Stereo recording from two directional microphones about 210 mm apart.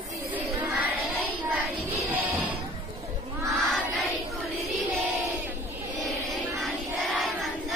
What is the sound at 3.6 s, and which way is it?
Choir, centre (ahead or behind).